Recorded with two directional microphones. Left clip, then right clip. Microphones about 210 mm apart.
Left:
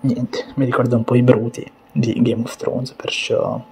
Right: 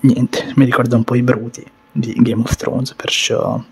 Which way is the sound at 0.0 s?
45° right (ahead or behind).